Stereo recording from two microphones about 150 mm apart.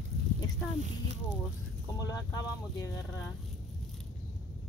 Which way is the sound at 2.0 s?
25° left (ahead or behind).